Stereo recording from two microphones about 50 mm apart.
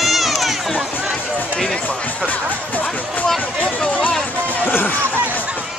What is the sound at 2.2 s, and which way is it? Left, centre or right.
Music, left.